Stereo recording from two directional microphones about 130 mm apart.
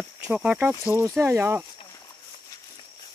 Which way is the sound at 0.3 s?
10° right (ahead or behind).